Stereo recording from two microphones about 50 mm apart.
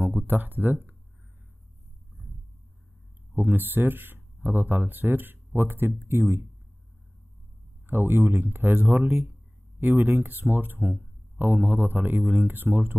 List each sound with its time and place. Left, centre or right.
0.3 s speech: right
3.3 s speech: right
7.8 s speech: right
9.2 s a sound: right
10.5 s speech: right